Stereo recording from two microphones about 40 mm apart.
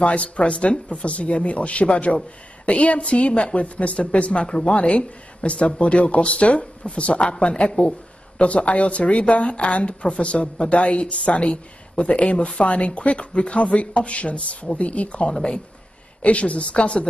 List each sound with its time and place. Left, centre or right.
0.0 s speech: left
15.3 s speech: left